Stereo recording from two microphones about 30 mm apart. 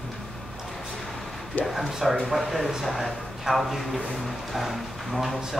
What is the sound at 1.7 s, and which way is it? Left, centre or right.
Speech, centre.